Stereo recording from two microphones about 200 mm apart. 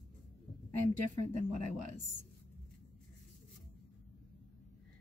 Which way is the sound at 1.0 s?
40° right (ahead or behind).